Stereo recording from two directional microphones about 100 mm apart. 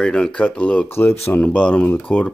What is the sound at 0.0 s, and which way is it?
Speech, 5° left (ahead or behind).